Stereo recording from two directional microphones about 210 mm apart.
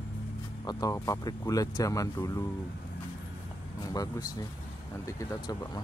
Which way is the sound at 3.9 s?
15° left (ahead or behind).